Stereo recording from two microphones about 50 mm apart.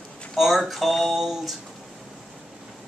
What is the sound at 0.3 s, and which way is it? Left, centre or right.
Speech, centre.